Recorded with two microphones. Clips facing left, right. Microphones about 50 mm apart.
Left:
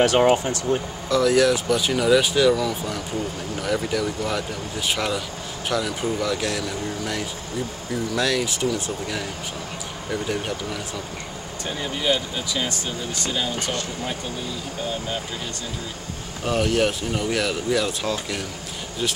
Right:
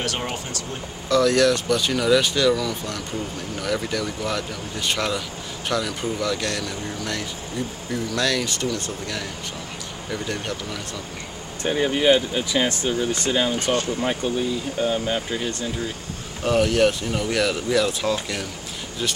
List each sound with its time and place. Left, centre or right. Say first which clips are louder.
0.0 s speech: left 10 dB; left
1.0 s speech: right 1 dB; centre
11.6 s speech: right 7 dB; right
16.4 s speech: right 3 dB; centre